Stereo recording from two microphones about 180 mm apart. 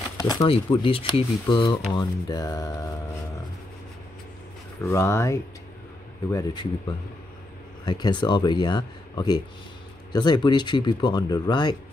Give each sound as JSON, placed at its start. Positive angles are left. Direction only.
{"t": 0.2, "sound": "speech", "side_deg": 20}
{"t": 4.8, "sound": "speech", "side_deg": 15}
{"t": 7.8, "sound": "speech", "side_deg": 25}